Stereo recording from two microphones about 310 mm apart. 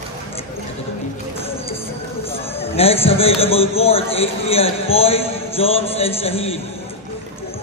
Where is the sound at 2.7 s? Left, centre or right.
Centre.